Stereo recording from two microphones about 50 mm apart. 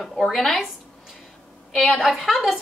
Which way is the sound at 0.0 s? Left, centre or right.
Centre.